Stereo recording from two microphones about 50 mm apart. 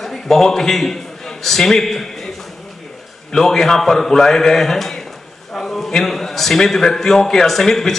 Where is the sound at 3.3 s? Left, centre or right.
Centre.